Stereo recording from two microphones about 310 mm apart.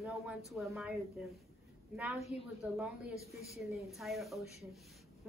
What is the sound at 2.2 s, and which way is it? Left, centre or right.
Speech, centre.